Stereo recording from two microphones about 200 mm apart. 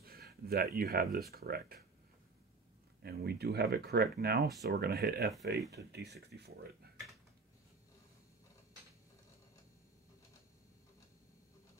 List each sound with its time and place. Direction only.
0.0 s speech: 50° right (ahead or behind)
3.0 s speech: 55° right (ahead or behind)